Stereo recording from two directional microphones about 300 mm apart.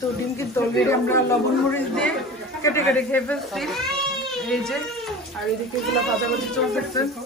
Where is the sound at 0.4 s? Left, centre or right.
Centre.